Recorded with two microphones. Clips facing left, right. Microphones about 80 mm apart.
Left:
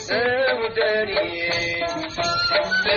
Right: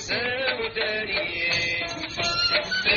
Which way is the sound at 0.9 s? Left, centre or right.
Left.